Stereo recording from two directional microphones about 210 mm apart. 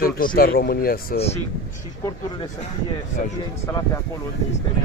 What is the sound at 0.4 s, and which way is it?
Speech, 45° left (ahead or behind).